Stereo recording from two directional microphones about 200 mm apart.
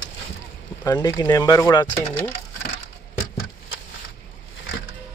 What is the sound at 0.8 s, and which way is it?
Speech, 20° left (ahead or behind).